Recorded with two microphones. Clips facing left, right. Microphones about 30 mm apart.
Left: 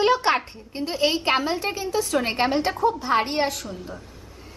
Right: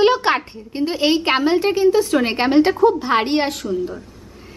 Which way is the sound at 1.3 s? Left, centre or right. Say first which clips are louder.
Right 6 dB; right.